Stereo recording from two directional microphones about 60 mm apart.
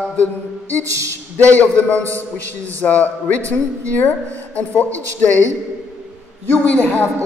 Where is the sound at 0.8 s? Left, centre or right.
Right.